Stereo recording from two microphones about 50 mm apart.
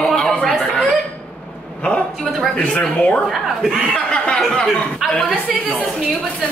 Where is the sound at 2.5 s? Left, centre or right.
Left.